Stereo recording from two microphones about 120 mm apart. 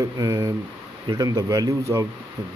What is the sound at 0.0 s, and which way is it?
A man's voice, 25° right (ahead or behind).